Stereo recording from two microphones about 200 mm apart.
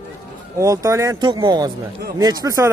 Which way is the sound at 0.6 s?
15° right (ahead or behind).